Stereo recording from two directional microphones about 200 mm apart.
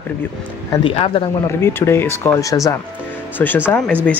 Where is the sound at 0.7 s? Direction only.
25° left (ahead or behind).